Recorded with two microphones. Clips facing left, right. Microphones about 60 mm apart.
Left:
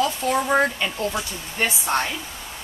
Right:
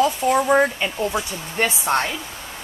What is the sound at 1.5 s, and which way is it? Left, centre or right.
Speech, right.